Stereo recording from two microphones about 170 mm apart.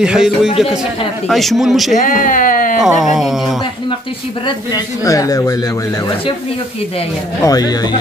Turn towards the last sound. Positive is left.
turn(degrees=20)  # may be behind; listen again after turning